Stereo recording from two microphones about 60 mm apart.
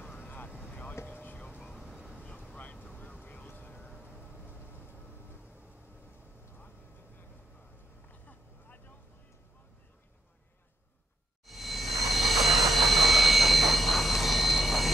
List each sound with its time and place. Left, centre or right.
0.0 s vehicle: left
1.0 s whispering: left
1.9 s vehicle: centre
2.5 s vehicle: left
8.1 s vehicle: left
11.4 s vehicle: centre